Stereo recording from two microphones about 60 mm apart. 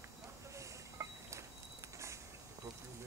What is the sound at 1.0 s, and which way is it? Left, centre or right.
Insect, right.